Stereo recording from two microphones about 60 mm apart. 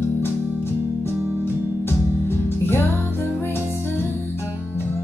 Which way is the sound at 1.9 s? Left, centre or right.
Left.